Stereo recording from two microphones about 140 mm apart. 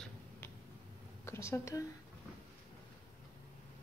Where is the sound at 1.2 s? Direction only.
20° left (ahead or behind).